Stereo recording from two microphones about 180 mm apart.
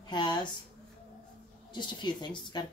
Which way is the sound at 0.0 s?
25° left (ahead or behind).